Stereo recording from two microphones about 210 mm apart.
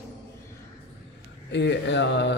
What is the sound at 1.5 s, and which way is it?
Speech, 55° left (ahead or behind).